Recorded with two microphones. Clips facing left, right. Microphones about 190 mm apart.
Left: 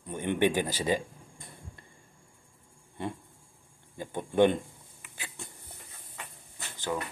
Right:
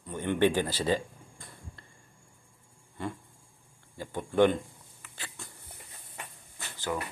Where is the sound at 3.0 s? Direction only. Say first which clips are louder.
Left 1 dB; 20° left (ahead or behind).